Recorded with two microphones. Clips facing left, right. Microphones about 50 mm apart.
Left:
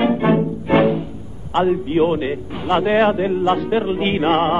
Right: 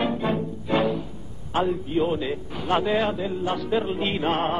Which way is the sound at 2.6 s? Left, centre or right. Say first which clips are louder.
Left 7 dB; left.